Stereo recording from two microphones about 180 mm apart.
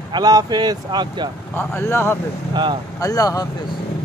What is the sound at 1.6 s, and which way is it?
Speech, 10° left (ahead or behind).